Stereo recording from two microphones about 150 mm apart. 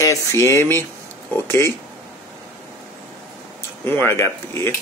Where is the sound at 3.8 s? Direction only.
15° left (ahead or behind).